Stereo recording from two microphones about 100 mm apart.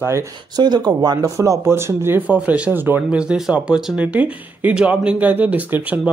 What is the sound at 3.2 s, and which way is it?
Speech, 5° right (ahead or behind).